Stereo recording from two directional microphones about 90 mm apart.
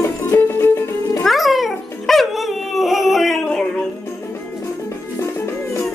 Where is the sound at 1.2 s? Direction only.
Centre (ahead or behind).